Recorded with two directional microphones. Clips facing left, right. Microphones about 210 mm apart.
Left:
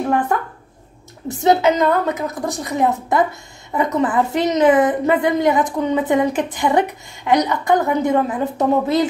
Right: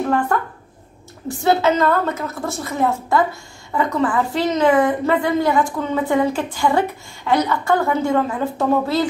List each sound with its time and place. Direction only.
1.4 s a woman's voice: 15° left (ahead or behind)